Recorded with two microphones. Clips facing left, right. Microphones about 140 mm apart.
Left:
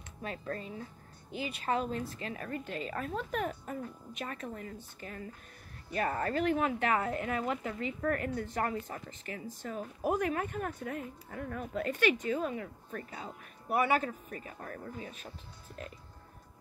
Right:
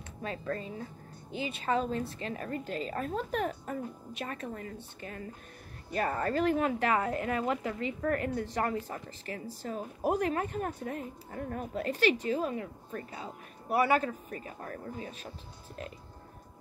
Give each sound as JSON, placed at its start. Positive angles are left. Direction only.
{"t": 0.2, "sound": "speech", "side_deg": -30}
{"t": 5.9, "sound": "speech", "side_deg": -40}